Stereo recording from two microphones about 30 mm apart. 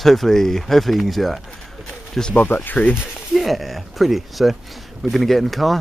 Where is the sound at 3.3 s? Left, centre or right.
Centre.